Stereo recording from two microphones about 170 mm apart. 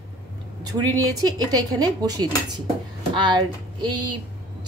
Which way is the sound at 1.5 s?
20° right (ahead or behind).